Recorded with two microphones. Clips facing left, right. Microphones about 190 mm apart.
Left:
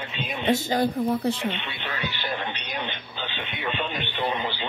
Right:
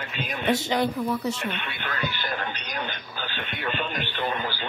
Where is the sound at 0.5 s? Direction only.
50° left (ahead or behind).